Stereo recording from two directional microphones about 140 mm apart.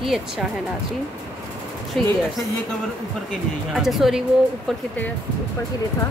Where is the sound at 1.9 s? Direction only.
5° left (ahead or behind).